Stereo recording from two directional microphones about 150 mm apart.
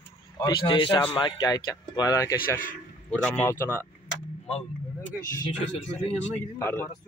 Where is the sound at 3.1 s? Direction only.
10° left (ahead or behind).